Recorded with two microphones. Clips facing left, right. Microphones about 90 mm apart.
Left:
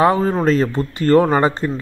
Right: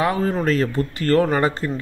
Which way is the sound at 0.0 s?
30° left (ahead or behind).